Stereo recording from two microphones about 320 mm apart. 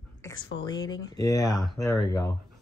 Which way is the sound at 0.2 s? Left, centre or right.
Centre.